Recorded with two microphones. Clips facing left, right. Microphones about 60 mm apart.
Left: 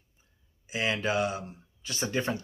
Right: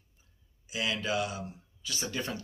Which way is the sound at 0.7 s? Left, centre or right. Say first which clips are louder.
Left 3 dB; left.